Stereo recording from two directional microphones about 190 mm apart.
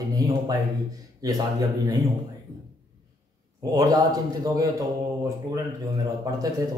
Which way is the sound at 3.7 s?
20° right (ahead or behind).